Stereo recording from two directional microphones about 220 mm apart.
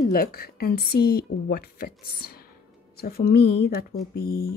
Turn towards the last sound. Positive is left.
turn(degrees=45)  # may be behind; listen again after turning